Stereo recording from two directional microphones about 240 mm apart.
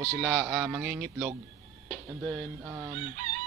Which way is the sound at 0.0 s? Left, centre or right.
Centre.